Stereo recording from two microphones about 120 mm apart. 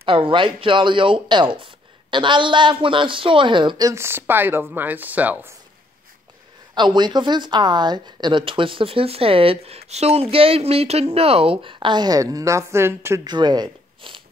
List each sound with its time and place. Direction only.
0.0 s speech: 45° right (ahead or behind)
3.9 s speech: 20° right (ahead or behind)
6.7 s speech: 40° right (ahead or behind); by 13.2 s 20° right (ahead or behind)
13.2 s speech: 35° right (ahead or behind)